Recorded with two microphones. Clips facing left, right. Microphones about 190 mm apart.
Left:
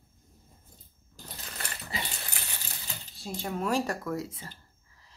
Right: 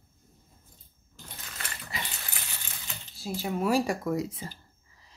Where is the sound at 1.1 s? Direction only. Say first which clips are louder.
Left 2 dB; 35° left (ahead or behind).